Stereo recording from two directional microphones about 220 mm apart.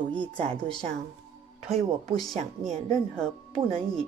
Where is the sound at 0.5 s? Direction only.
5° left (ahead or behind).